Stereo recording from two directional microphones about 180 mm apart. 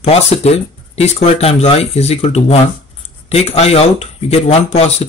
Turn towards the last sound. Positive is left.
turn(degrees=35)  # may be behind; listen again after turning